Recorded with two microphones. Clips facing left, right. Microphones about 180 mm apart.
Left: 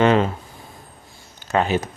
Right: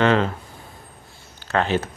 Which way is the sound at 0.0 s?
15° left (ahead or behind).